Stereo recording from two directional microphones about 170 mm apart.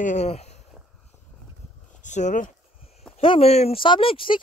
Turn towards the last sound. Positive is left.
turn(degrees=30)  # may be behind; listen again after turning